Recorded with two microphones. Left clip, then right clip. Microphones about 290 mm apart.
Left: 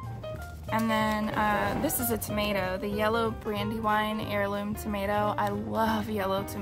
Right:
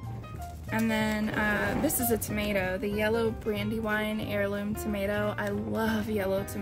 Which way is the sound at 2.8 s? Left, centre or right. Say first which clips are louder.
Left 1 dB; left.